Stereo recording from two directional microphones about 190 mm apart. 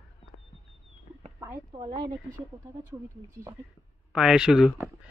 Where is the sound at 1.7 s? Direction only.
20° right (ahead or behind).